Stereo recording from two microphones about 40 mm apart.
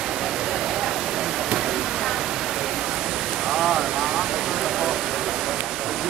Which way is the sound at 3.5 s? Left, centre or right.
Centre.